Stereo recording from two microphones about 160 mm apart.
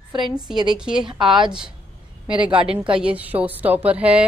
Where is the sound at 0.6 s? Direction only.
5° right (ahead or behind).